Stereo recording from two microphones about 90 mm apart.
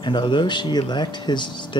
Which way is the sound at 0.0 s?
60° left (ahead or behind).